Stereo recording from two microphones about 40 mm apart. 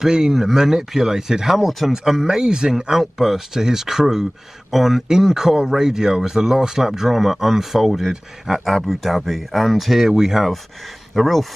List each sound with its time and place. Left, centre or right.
0.0 s speech: centre
2.2 s speech: centre
2.9 s speech: centre
11.1 s speech: centre